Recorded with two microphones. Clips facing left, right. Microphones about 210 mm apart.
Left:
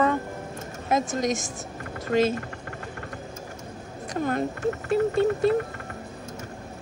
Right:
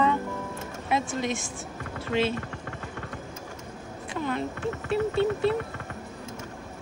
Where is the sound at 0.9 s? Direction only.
45° left (ahead or behind).